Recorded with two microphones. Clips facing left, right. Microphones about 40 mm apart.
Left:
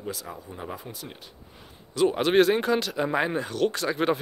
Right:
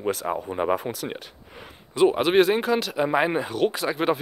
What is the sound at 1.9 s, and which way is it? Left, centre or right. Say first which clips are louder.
Speech: right 4 dB; right.